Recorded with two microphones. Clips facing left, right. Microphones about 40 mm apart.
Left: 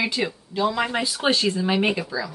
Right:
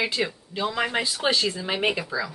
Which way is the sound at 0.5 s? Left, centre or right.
Right.